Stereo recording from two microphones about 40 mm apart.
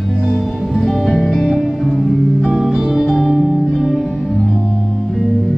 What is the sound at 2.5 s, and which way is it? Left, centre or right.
Music, centre.